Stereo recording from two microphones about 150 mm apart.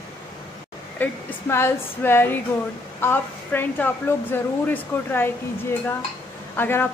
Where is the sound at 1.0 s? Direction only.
10° left (ahead or behind).